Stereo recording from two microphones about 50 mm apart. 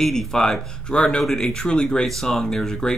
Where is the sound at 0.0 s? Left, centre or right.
Centre.